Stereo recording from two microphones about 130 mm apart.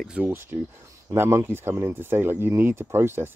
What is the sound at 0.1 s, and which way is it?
Speech, 10° right (ahead or behind).